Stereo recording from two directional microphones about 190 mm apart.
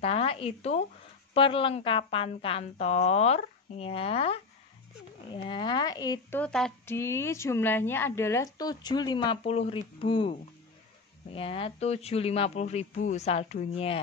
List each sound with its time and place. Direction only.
0.0 s a woman's voice: 30° left (ahead or behind)
6.4 s speech: 5° left (ahead or behind)
6.9 s a woman's voice: 15° left (ahead or behind); by 14.0 s 30° left (ahead or behind)